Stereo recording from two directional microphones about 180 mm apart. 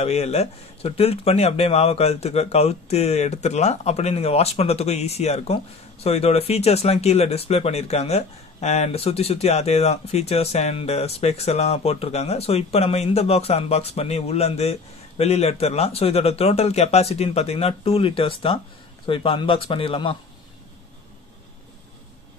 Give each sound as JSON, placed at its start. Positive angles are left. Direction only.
{"t": 0.0, "sound": "speech", "side_deg": 35}